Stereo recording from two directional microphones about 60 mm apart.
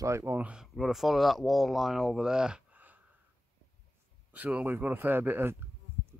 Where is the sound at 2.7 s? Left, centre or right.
Right.